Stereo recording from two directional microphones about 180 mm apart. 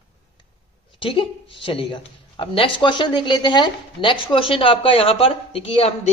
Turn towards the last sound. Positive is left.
turn(degrees=30)  # may be behind; listen again after turning